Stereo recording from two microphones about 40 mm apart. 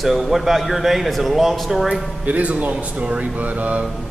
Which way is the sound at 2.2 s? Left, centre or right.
Right.